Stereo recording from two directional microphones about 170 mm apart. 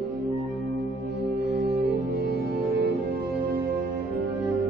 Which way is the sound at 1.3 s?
75° right (ahead or behind).